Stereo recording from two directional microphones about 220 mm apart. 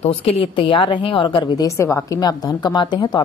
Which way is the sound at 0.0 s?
25° left (ahead or behind).